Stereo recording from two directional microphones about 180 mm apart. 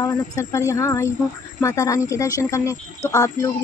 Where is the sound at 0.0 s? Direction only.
15° left (ahead or behind).